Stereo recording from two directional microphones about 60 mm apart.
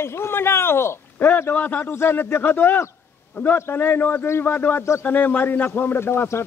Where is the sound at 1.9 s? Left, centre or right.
Left.